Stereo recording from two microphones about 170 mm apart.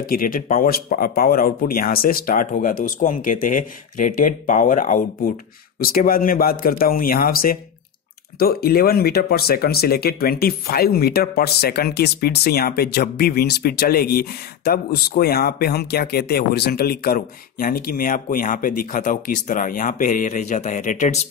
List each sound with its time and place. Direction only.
0.0 s speech: 60° left (ahead or behind)